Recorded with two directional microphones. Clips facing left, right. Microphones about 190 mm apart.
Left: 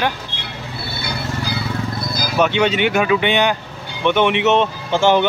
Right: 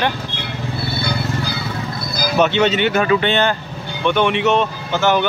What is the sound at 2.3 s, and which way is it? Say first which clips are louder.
Speech: right 1 dB; 10° left (ahead or behind).